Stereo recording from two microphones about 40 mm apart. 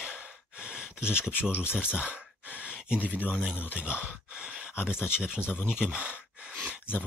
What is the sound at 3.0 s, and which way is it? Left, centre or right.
Speech, right.